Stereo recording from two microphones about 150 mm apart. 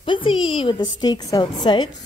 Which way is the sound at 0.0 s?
35° left (ahead or behind).